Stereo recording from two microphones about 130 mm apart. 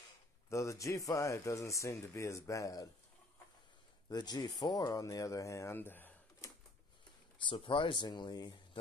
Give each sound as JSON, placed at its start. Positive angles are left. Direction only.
{"t": 0.5, "sound": "speech", "side_deg": 25}
{"t": 4.1, "sound": "speech", "side_deg": 30}
{"t": 7.4, "sound": "speech", "side_deg": 40}